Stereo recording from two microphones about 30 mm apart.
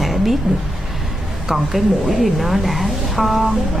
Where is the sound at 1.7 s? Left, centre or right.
Centre.